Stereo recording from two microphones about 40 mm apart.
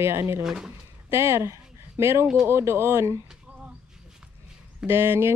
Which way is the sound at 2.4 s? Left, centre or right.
Right.